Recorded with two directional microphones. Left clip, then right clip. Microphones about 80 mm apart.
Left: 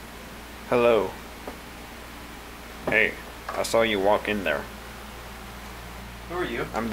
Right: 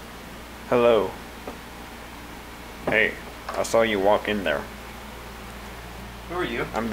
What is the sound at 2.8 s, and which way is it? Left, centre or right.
Speech, centre.